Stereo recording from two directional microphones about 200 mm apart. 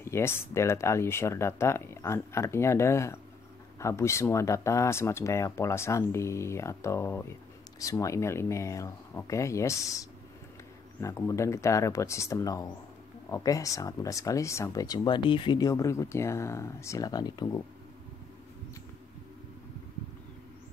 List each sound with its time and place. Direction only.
0.0 s speech: 10° left (ahead or behind)